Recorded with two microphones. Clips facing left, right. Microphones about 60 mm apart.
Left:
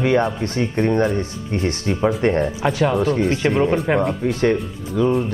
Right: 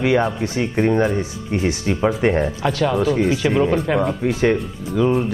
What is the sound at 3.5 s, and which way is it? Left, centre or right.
Speech, centre.